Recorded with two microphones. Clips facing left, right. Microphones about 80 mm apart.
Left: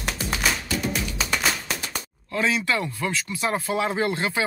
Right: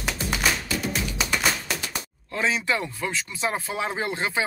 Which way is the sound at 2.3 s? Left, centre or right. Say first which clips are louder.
Left 1 dB; right.